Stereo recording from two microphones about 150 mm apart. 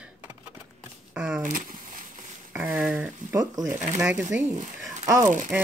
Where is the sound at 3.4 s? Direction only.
25° right (ahead or behind).